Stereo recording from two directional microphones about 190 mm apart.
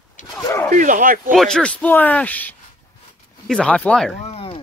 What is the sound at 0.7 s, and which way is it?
Speech, 40° right (ahead or behind).